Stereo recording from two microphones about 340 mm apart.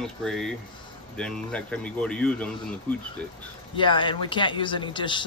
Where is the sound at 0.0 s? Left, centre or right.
Centre.